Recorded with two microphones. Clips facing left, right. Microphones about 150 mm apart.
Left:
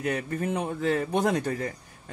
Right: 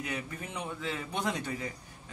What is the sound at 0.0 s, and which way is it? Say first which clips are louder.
Speech: left 9 dB; 50° left (ahead or behind).